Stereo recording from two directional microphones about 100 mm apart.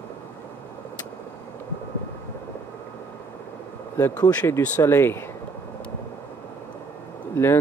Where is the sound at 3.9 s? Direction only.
20° left (ahead or behind).